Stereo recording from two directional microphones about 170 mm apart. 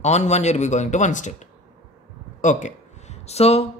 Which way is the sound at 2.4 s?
45° left (ahead or behind).